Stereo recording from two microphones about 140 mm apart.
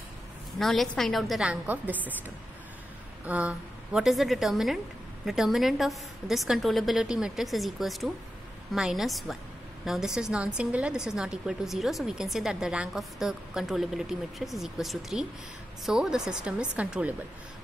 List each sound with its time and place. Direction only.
0.6 s a woman's voice: centre (ahead or behind)
3.3 s a woman's voice: 10° right (ahead or behind)